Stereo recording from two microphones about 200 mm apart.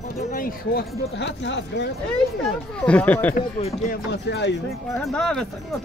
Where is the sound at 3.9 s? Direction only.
60° left (ahead or behind).